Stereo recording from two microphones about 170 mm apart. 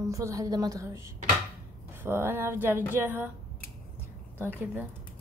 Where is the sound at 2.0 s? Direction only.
15° right (ahead or behind).